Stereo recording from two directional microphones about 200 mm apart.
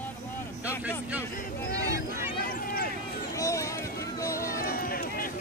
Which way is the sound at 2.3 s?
45° left (ahead or behind).